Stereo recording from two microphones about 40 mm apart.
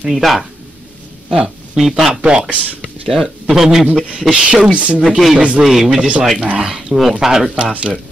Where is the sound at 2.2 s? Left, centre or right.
Right.